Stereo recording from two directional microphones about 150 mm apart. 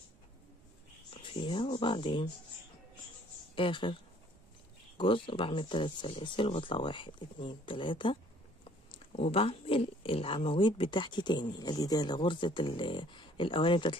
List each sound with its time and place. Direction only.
1.1 s speech: 35° left (ahead or behind)
3.5 s speech: 35° left (ahead or behind)